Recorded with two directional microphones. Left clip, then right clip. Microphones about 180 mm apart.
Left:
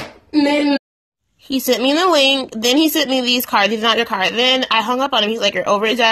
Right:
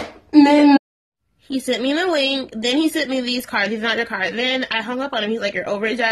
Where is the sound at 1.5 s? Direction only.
30° left (ahead or behind).